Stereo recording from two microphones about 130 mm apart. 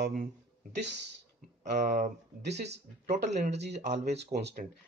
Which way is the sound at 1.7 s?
75° right (ahead or behind).